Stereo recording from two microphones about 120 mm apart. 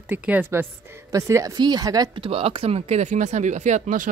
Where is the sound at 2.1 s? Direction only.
50° right (ahead or behind); by 4.1 s 90° right.